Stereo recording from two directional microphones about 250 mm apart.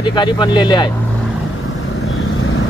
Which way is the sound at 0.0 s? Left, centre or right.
Centre.